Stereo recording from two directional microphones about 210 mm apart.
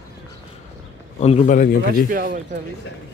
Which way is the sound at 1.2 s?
30° left (ahead or behind).